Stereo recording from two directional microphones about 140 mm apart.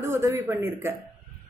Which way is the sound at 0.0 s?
20° right (ahead or behind).